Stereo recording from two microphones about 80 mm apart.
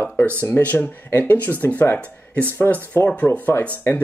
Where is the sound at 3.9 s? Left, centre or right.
Left.